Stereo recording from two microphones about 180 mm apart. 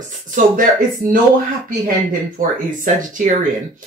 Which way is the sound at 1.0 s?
45° right (ahead or behind).